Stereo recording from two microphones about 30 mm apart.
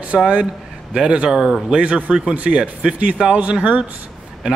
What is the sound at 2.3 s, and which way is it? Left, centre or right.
Speech, right.